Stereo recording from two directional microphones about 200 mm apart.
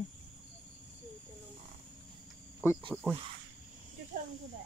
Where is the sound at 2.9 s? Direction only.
5° left (ahead or behind).